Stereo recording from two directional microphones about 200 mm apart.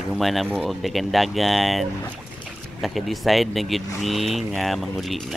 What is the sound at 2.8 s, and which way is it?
Speech, centre (ahead or behind).